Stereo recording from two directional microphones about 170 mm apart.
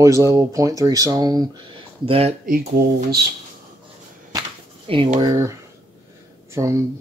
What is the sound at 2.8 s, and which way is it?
Speech, 70° right (ahead or behind).